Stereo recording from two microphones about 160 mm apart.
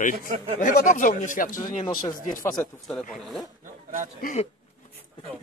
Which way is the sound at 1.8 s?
25° left (ahead or behind).